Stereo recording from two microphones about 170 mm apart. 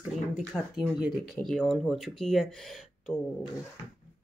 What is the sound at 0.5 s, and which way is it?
Speech, 5° left (ahead or behind).